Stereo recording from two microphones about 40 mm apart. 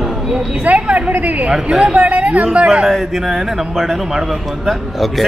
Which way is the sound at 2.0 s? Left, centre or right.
Right.